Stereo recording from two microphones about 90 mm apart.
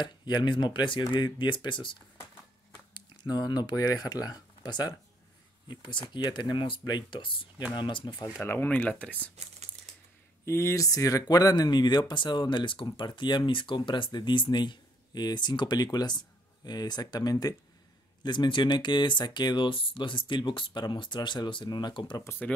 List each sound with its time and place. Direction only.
0.0 s speech: 55° left (ahead or behind)
2.9 s speech: 50° left (ahead or behind)
8.6 s speech: 15° left (ahead or behind)
10.4 s speech: 30° left (ahead or behind)
18.2 s speech: 55° left (ahead or behind)
22.1 s speech: 30° left (ahead or behind)